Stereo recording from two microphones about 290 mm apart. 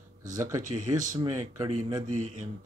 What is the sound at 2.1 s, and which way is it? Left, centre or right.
Speech, right.